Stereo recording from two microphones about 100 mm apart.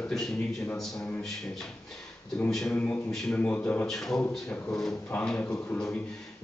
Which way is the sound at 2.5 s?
5° left (ahead or behind).